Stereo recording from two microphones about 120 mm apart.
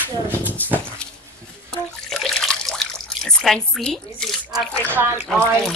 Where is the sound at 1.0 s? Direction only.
10° left (ahead or behind).